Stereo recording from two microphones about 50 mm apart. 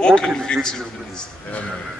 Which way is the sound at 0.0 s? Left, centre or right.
Centre.